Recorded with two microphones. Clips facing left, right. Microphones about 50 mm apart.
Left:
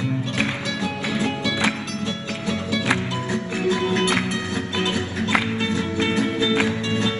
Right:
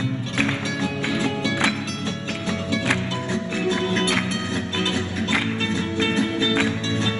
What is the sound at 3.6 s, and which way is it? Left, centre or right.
Music, right.